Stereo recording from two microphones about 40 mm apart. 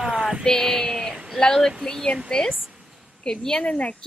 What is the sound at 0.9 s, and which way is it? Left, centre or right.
Speech, centre.